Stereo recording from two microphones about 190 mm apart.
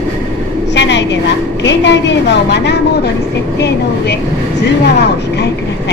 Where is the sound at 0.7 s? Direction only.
65° left (ahead or behind).